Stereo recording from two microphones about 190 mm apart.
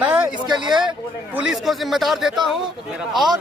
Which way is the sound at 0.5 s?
25° right (ahead or behind).